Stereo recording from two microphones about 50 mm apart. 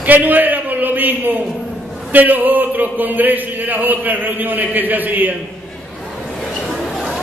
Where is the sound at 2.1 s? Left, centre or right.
Right.